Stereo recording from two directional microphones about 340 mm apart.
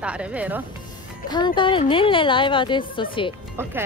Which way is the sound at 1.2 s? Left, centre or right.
Centre.